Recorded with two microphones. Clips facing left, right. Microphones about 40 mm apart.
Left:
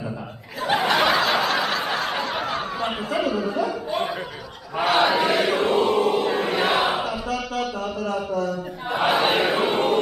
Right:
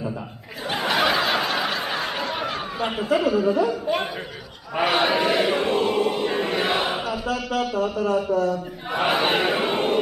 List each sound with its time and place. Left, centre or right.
0.7 s snicker: centre
3.2 s chant: centre
3.8 s a sound: centre
4.7 s chant: centre
7.7 s a man's voice: right
8.9 s chant: centre